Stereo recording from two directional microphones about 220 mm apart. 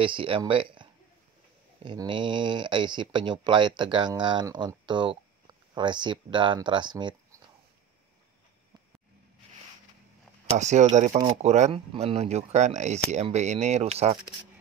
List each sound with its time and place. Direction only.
0.0 s speech: 25° right (ahead or behind)
1.8 s speech: 20° right (ahead or behind)
10.5 s speech: 30° right (ahead or behind)